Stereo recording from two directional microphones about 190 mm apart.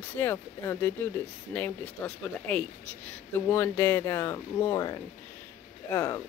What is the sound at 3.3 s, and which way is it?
Speech, 10° left (ahead or behind).